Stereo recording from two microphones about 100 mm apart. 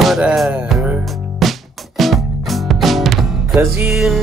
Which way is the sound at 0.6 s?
10° right (ahead or behind).